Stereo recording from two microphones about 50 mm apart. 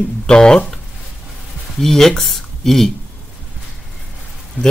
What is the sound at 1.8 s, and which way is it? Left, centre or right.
Speech, centre.